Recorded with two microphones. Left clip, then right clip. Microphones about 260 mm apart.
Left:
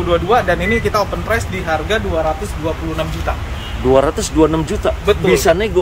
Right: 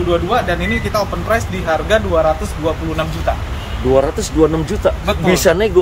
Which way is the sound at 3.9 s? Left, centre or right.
Centre.